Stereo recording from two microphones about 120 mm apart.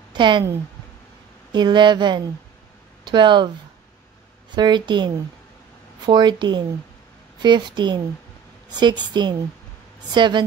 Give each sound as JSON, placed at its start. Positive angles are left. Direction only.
{"t": 0.1, "sound": "speech", "side_deg": -40}
{"t": 1.5, "sound": "speech", "side_deg": -40}
{"t": 4.6, "sound": "speech", "side_deg": -40}